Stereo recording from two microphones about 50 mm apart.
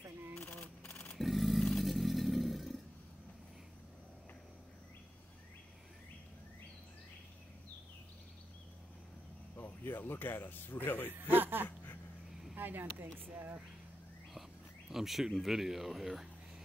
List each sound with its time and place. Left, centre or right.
0.4 s a sound: left
1.1 s a sound: centre
1.9 s vehicle: centre
9.6 s speech: left
11.1 s speech: right
14.9 s speech: centre